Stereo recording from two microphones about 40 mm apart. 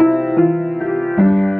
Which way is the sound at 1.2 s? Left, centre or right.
Centre.